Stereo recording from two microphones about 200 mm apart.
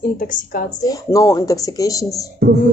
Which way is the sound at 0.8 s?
15° left (ahead or behind).